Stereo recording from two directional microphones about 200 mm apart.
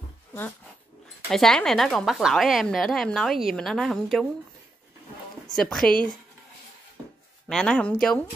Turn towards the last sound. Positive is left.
turn(degrees=5)  # may be behind; listen again after turning